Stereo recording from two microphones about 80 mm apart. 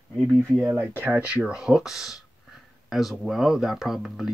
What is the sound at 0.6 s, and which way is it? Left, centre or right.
Speech, right.